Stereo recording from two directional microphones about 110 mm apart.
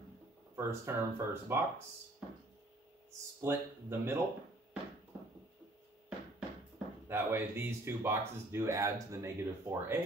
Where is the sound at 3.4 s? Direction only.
20° right (ahead or behind).